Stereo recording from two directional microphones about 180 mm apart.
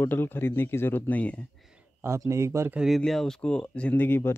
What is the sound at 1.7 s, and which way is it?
Speech, 15° right (ahead or behind).